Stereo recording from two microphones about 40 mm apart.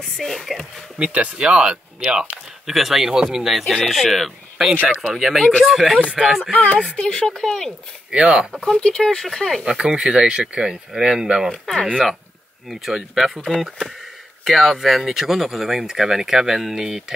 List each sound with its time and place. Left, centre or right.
0.0 s speech: centre
0.9 s speech: right
2.6 s speech: centre
6.5 s speech: left
7.1 s speech: centre
8.1 s speech: right
8.7 s speech: left
9.0 s speech: centre
9.7 s speech: centre
11.4 s speech: centre
12.9 s speech: centre
13.5 s speech: centre